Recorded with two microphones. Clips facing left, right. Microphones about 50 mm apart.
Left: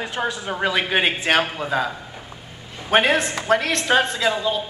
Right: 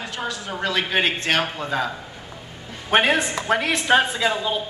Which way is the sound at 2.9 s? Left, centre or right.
Centre.